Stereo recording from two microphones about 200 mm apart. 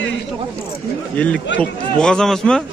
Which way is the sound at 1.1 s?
5° left (ahead or behind).